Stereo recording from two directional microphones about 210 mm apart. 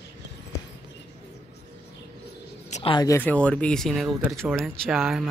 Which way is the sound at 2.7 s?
25° left (ahead or behind).